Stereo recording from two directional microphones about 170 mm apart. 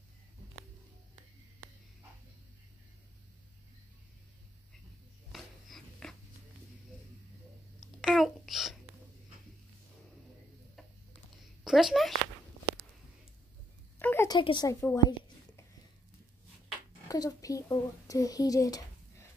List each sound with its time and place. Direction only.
5.3 s dog: centre (ahead or behind)
8.0 s babbling: centre (ahead or behind)
11.6 s speech: centre (ahead or behind)
13.9 s a sound: 15° left (ahead or behind)
14.3 s a woman's voice: 25° left (ahead or behind)
17.1 s speech: 20° left (ahead or behind)